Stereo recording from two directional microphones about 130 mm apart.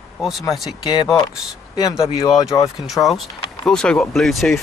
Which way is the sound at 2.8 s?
Centre (ahead or behind).